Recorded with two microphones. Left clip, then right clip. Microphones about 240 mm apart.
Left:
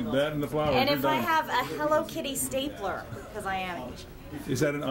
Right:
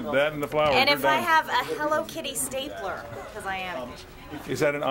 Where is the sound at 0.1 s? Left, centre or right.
Right.